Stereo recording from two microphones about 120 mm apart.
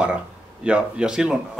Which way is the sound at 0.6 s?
10° right (ahead or behind).